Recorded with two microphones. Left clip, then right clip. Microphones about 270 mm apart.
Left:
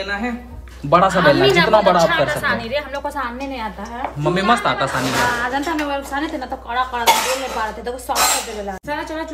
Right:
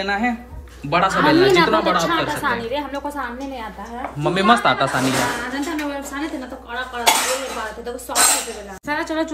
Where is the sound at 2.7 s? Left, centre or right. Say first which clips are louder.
Left 2 dB; centre.